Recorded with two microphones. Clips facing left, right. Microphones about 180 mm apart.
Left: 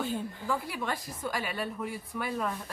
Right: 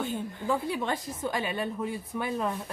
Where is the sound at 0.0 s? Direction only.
Centre (ahead or behind).